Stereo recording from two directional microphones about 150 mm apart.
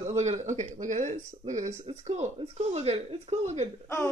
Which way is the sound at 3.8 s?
15° left (ahead or behind).